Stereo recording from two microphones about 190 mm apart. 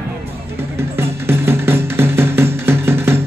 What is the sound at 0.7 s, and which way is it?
Music, 10° right (ahead or behind).